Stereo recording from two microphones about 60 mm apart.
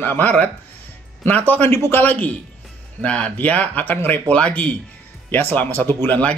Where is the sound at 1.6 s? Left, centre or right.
Left.